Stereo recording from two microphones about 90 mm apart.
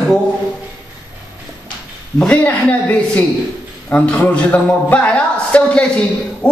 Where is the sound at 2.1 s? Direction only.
15° left (ahead or behind).